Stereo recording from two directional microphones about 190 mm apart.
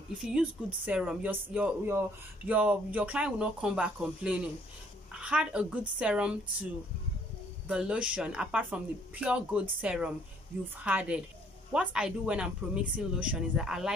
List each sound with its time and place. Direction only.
0.2 s speech: 5° right (ahead or behind)
7.6 s speech: 5° right (ahead or behind)